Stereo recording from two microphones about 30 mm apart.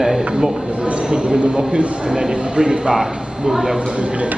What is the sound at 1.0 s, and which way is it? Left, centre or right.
A man's voice, right.